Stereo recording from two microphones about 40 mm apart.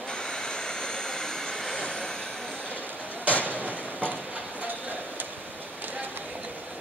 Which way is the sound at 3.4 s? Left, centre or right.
Left.